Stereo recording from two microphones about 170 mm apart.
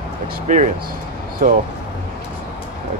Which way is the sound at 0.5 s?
45° right (ahead or behind).